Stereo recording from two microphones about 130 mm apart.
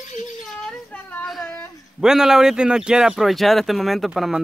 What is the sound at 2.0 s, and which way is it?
Speech, 5° right (ahead or behind).